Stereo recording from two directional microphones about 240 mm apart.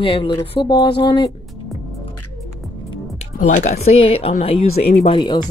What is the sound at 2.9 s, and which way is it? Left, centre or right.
Speech, left.